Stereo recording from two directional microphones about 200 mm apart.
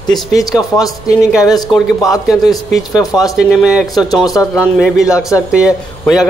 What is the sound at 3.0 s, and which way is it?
Speech, 15° left (ahead or behind).